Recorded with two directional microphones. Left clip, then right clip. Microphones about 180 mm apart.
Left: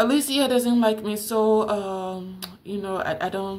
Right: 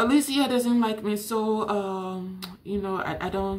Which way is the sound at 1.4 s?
10° right (ahead or behind).